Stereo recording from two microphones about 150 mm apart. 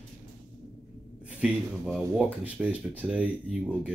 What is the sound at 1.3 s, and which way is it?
A man's voice, 10° right (ahead or behind).